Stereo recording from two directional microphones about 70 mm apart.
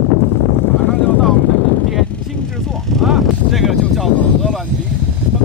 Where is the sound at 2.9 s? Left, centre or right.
Centre.